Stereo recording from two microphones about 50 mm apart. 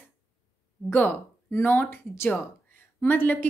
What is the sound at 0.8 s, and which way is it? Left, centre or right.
A woman's voice, left.